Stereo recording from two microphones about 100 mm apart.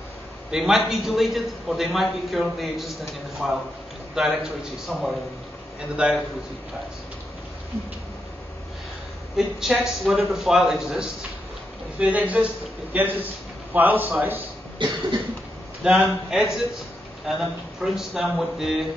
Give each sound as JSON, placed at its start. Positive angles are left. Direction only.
{"t": 0.5, "sound": "a man's voice", "side_deg": -5}
{"t": 9.4, "sound": "a man's voice", "side_deg": 0}
{"t": 12.0, "sound": "a man's voice", "side_deg": -15}
{"t": 14.8, "sound": "cough", "side_deg": -55}
{"t": 15.8, "sound": "a man's voice", "side_deg": -5}